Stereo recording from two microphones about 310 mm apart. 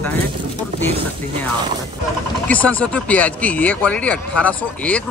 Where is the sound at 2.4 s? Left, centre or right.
Centre.